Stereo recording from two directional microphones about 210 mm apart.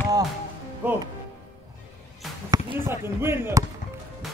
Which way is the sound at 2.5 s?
15° right (ahead or behind).